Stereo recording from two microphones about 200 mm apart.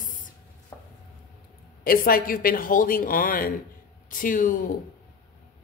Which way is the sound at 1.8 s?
45° left (ahead or behind).